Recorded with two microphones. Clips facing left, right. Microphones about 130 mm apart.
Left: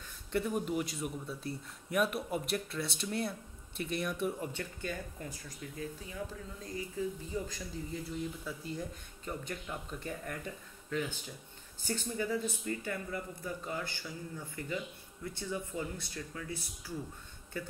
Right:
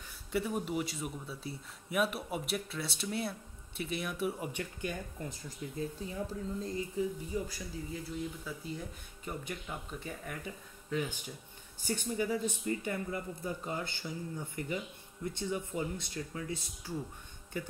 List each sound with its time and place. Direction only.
0.3 s speech: centre (ahead or behind)
4.5 s speech: 15° right (ahead or behind)
7.0 s speech: 10° right (ahead or behind)
12.6 s speech: 25° right (ahead or behind)